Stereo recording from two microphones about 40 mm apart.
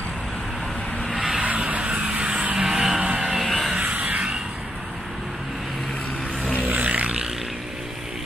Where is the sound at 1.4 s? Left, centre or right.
Right.